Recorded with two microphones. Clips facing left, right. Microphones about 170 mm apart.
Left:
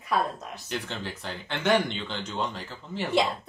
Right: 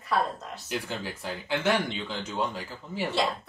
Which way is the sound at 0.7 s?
5° right (ahead or behind).